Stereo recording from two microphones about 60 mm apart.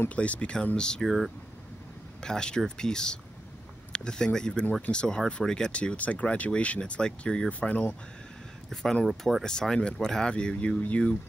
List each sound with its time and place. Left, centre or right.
0.1 s speech: left
1.0 s speech: centre
2.2 s speech: centre
9.0 s speech: centre; by 11.1 s left